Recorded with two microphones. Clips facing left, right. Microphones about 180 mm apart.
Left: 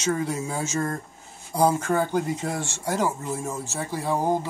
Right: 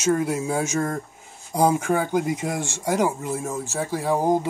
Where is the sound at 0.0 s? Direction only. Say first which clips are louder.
Right 4 dB; 10° right (ahead or behind).